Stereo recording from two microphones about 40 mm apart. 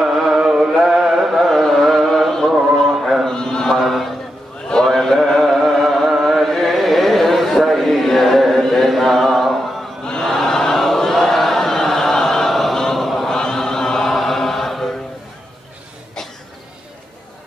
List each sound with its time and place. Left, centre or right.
0.0 s music: centre
0.4 s chant: centre
1.3 s carnatic music: centre
3.3 s sheep: centre
3.8 s chant: centre
4.8 s music: centre
6.2 s chant: centre
10.0 s chant: centre